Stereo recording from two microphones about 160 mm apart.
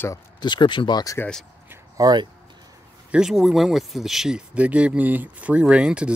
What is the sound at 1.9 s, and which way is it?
Speech, 25° right (ahead or behind).